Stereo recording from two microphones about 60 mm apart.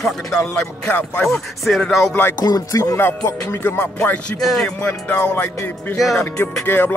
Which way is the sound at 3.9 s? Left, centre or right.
Centre.